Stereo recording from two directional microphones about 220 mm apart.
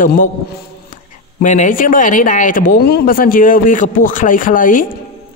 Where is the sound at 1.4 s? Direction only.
35° left (ahead or behind).